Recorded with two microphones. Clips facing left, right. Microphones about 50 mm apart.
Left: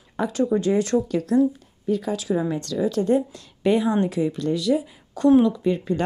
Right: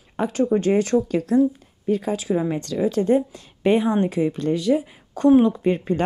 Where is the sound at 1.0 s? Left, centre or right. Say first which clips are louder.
Right 1 dB; right.